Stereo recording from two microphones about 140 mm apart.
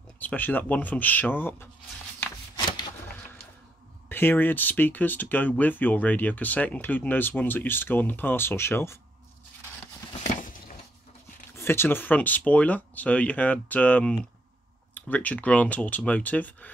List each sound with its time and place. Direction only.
0.2 s speech: 10° left (ahead or behind)
2.1 s shuffling cards: 30° left (ahead or behind)
4.1 s speech: 15° left (ahead or behind)
10.2 s a sound: 65° left (ahead or behind)
11.5 s speech: 15° left (ahead or behind)